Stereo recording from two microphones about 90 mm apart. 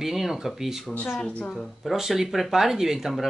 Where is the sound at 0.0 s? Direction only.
5° right (ahead or behind).